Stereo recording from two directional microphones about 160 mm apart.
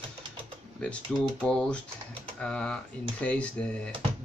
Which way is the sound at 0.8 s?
5° left (ahead or behind).